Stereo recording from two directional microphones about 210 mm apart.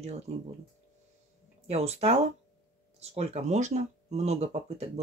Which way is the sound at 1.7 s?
30° right (ahead or behind).